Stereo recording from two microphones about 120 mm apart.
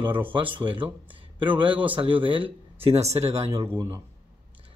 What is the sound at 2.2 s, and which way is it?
Speech, 45° right (ahead or behind).